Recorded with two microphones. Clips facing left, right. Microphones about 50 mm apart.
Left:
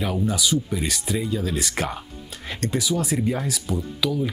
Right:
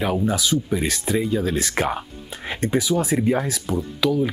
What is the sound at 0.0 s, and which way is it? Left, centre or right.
Speech, centre.